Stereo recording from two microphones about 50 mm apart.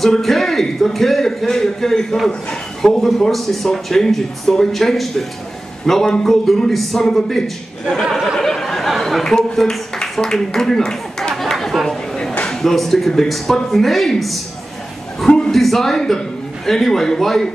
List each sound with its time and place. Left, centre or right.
0.0 s a man's voice: centre
8.4 s a sound: centre
12.4 s speech: centre
15.2 s a man's voice: centre
15.5 s a man's voice: centre